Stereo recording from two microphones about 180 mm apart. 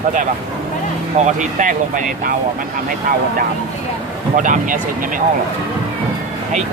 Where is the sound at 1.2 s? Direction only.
45° right (ahead or behind).